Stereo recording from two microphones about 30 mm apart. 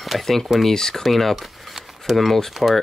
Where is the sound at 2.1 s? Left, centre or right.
Centre.